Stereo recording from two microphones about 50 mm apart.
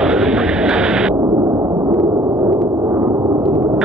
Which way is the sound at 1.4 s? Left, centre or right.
Right.